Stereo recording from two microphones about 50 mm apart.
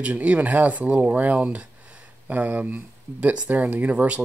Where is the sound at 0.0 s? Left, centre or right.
Right.